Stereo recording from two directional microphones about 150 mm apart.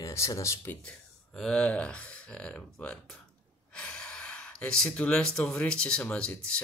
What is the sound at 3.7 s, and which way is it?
Gasp, 5° left (ahead or behind).